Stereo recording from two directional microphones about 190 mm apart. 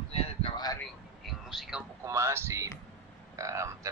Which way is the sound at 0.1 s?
30° left (ahead or behind).